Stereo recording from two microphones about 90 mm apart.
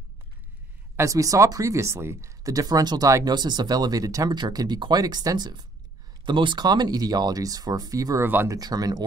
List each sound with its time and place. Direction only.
0.9 s speech: 35° right (ahead or behind); by 5.0 s 55° right (ahead or behind)
5.0 s speech: 45° right (ahead or behind)
6.2 s speech: 60° right (ahead or behind); by 8.2 s 40° right (ahead or behind)
8.2 s speech: 25° right (ahead or behind)
8.5 s speech: 45° right (ahead or behind)